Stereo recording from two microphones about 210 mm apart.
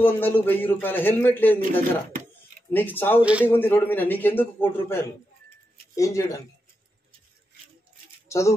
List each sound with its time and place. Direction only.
0.0 s a man's voice: 10° left (ahead or behind)
3.2 s speech: 5° right (ahead or behind)
3.4 s a man's voice: 10° left (ahead or behind)
8.3 s speech: 15° left (ahead or behind)